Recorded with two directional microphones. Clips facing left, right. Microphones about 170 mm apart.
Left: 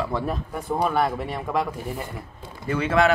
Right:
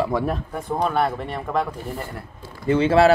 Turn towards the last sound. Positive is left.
turn(degrees=-30)  # may be behind; listen again after turning